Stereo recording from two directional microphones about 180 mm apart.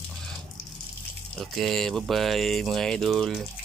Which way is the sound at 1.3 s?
Centre (ahead or behind).